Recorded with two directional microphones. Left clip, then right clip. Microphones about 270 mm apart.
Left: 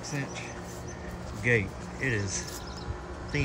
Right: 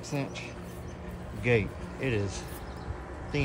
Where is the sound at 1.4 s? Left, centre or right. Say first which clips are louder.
Left 1 dB; centre.